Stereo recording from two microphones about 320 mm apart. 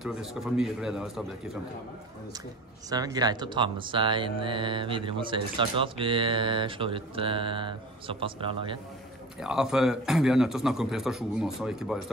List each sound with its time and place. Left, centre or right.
0.0 s speech: centre
2.9 s speech: centre
9.4 s speech: centre